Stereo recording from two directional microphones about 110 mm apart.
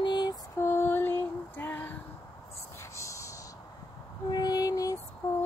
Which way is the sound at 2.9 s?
30° left (ahead or behind).